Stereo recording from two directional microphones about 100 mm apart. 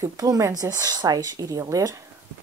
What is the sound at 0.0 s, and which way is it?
Speech, 35° right (ahead or behind).